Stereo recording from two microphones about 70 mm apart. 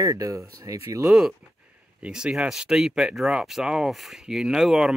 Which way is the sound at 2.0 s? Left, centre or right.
Centre.